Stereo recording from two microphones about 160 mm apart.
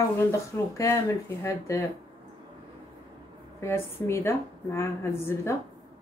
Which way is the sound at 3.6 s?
15° left (ahead or behind).